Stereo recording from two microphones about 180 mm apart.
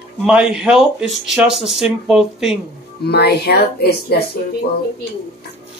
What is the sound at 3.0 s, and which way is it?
Speech, 65° left (ahead or behind).